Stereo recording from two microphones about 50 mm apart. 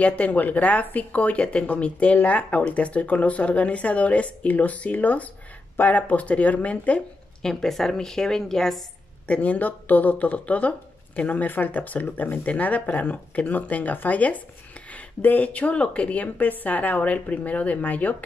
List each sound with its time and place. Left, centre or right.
0.0 s a woman's voice: left
7.4 s a woman's voice: centre
9.3 s a woman's voice: left